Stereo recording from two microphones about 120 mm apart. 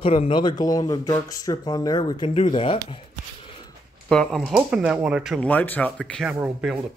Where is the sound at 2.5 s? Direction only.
50° left (ahead or behind).